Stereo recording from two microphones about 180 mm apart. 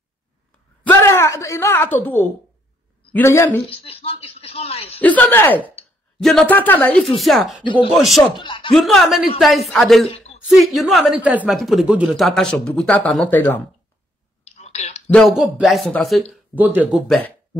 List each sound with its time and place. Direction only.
0.8 s speech: 15° left (ahead or behind)
3.7 s speech: 30° left (ahead or behind)
5.0 s a woman's voice: 10° left (ahead or behind)
7.6 s speech: 25° left (ahead or behind)
7.9 s a woman's voice: centre (ahead or behind)
8.4 s speech: 25° left (ahead or behind)
8.7 s a woman's voice: centre (ahead or behind)
10.0 s a sound: 35° left (ahead or behind)
10.4 s a woman's voice: centre (ahead or behind)
14.4 s a sound: 40° left (ahead or behind)
15.1 s a woman's voice: centre (ahead or behind)